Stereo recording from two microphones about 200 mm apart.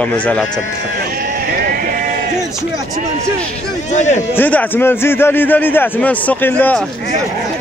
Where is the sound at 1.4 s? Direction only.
45° right (ahead or behind).